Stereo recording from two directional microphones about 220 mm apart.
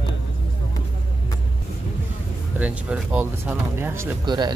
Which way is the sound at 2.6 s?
5° right (ahead or behind).